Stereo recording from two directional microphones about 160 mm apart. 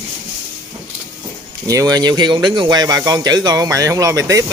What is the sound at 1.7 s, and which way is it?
Speech, 20° right (ahead or behind).